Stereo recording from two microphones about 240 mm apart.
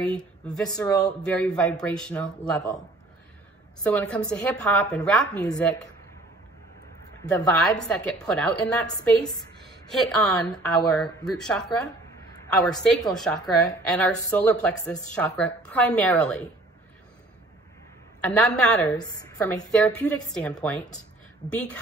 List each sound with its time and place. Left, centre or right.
0.0 s a woman's voice: centre
3.8 s a woman's voice: centre
7.2 s a woman's voice: centre
9.6 s a sound: centre
10.9 s a woman's voice: centre
18.2 s a woman's voice: centre